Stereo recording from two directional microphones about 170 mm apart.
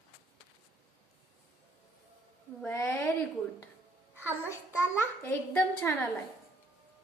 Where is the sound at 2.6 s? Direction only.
15° left (ahead or behind).